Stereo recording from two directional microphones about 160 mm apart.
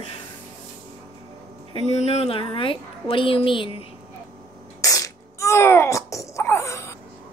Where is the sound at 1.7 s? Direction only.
40° left (ahead or behind).